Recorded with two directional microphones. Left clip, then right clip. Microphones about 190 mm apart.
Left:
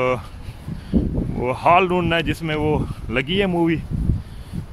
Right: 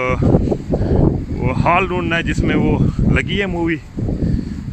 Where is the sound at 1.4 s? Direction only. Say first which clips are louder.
Even; 15° left (ahead or behind).